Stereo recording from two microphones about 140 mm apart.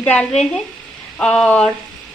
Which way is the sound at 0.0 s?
10° left (ahead or behind).